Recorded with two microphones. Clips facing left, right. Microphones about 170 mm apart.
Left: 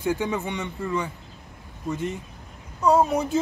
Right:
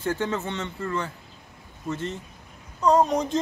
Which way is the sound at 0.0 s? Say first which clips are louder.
Left 2 dB; 10° left (ahead or behind).